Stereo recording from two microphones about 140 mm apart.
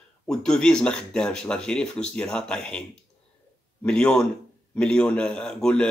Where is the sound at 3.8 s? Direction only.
5° left (ahead or behind).